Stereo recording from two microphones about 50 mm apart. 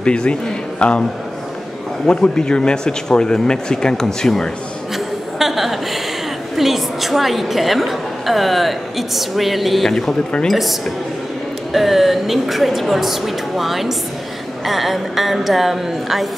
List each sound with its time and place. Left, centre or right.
0.0 s a man's voice: left
2.0 s speech: centre
4.9 s chuckle: centre
6.5 s a woman's voice: centre
9.8 s speech: centre
10.5 s a woman's voice: centre